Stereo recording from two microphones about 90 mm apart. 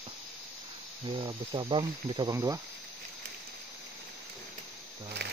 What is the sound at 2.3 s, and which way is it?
Speech, 40° right (ahead or behind).